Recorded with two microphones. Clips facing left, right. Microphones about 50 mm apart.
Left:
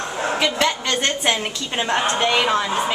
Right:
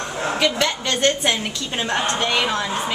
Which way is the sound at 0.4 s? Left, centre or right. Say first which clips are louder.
Even; left.